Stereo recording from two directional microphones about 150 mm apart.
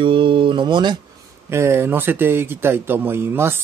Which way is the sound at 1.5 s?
20° right (ahead or behind).